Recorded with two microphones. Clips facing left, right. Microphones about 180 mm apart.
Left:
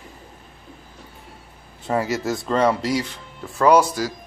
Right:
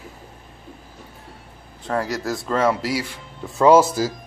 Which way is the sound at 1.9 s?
5° left (ahead or behind).